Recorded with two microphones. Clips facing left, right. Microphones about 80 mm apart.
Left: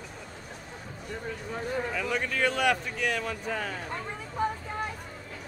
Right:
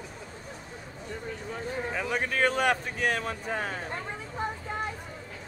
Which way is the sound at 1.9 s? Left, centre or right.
Right.